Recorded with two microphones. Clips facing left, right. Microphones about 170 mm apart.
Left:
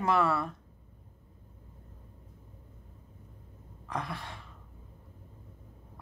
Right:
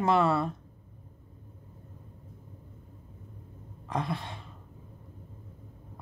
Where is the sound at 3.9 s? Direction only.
25° right (ahead or behind).